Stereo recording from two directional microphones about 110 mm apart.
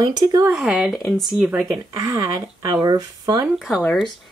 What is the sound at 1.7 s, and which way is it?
Speech, 35° right (ahead or behind).